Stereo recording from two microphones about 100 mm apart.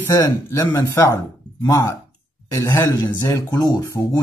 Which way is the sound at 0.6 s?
30° left (ahead or behind).